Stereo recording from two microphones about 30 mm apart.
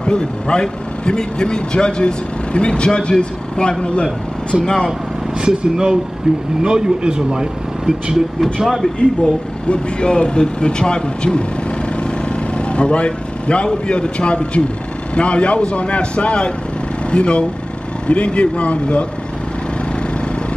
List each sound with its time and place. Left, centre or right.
0.0 s speech: left
5.4 s speech: right
7.3 s speech: centre
9.2 s speech: left
10.6 s vehicle: left
13.7 s speech: left